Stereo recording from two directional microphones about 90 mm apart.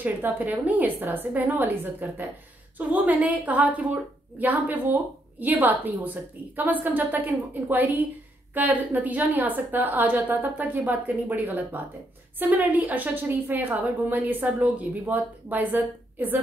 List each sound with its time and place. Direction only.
0.0 s a woman's voice: 20° right (ahead or behind)